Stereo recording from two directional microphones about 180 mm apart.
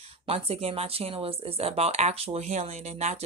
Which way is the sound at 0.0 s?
35° right (ahead or behind).